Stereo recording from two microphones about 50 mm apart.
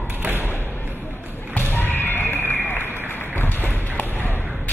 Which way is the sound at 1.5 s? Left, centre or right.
Left.